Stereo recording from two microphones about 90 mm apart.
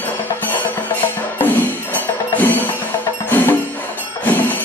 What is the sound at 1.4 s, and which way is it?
Music, 20° left (ahead or behind).